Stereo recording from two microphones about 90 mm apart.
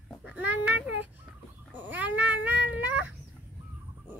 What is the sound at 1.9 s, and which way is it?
Cat, 20° right (ahead or behind).